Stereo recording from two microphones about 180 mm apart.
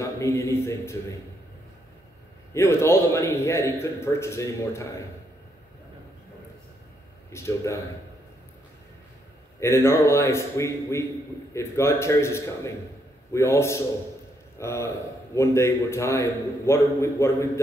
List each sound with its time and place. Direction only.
0.0 s a man's voice: 15° left (ahead or behind)
2.5 s a man's voice: 15° left (ahead or behind)
7.2 s a man's voice: 15° left (ahead or behind)
9.6 s a man's voice: 15° left (ahead or behind)